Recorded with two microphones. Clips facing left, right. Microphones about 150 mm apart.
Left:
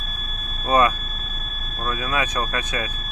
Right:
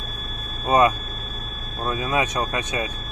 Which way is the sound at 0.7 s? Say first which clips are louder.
Right 1 dB; 20° right (ahead or behind).